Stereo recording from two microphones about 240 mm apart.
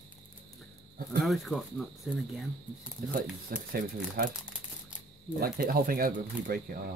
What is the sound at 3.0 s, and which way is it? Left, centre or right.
Speech, right.